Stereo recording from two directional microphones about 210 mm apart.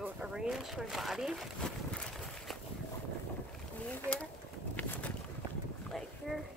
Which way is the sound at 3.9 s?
5° left (ahead or behind).